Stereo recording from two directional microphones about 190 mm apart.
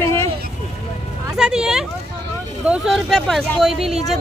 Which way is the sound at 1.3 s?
5° right (ahead or behind).